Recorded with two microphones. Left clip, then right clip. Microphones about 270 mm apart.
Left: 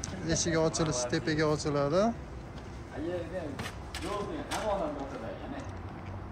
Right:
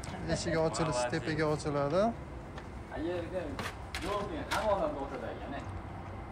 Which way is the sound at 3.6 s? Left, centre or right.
Centre.